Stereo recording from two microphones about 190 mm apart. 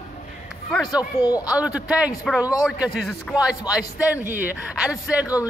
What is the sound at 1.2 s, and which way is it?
Speech, 20° left (ahead or behind).